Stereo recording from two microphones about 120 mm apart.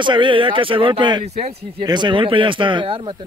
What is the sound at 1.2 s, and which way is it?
Speech, 65° right (ahead or behind).